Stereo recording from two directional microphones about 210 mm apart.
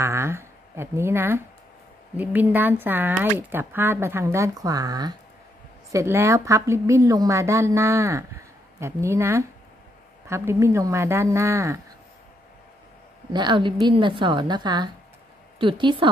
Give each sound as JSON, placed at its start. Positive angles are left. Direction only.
{"t": 0.0, "sound": "a woman's voice", "side_deg": -10}
{"t": 13.3, "sound": "a woman's voice", "side_deg": -20}